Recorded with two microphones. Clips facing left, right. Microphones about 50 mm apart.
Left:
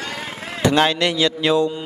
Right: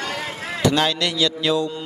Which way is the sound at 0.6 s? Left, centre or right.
Left.